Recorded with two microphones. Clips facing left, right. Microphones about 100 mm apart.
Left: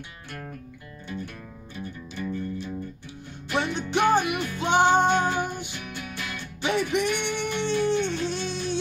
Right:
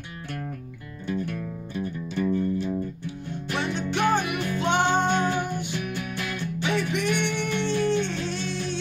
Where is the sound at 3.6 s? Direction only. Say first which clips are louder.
Left 2 dB; 15° left (ahead or behind).